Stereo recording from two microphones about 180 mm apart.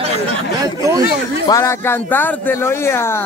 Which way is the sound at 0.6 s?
20° right (ahead or behind).